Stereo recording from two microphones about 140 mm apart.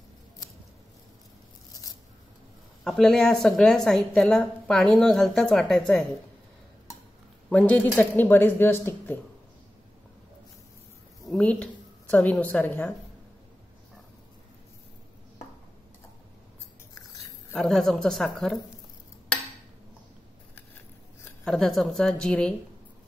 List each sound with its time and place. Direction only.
2.8 s a woman's voice: 5° left (ahead or behind)
7.4 s a man's voice: 10° left (ahead or behind)
11.2 s a woman's voice: 5° left (ahead or behind)
17.6 s a woman's voice: centre (ahead or behind)
21.5 s a woman's voice: centre (ahead or behind)